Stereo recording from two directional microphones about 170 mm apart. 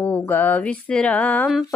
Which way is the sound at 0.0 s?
10° left (ahead or behind).